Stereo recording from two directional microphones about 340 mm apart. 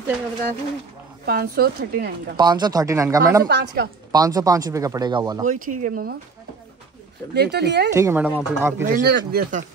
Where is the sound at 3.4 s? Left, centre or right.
Right.